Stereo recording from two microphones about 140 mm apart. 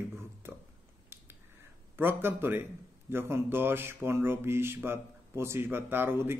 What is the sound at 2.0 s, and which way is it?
A man's voice, 15° right (ahead or behind).